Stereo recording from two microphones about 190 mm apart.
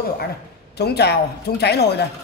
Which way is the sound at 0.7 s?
60° left (ahead or behind).